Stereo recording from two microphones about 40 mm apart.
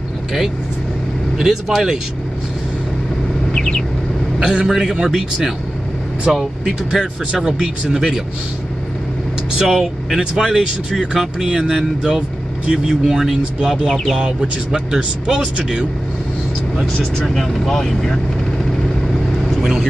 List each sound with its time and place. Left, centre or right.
1.4 s speech: centre
3.5 s vehicle: centre
4.4 s speech: centre
9.6 s speech: centre
10.3 s a man's voice: centre
16.8 s speech: centre